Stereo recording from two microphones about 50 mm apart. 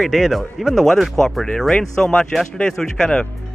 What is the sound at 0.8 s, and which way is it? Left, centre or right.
Speech, centre.